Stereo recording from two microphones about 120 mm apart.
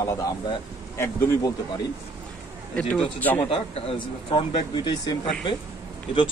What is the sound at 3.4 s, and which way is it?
Speech, 50° left (ahead or behind).